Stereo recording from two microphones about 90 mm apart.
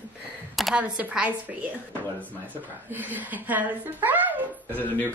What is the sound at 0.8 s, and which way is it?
A woman's voice, 15° right (ahead or behind).